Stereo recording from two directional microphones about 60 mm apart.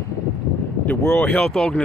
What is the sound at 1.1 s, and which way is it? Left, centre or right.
Speech, centre.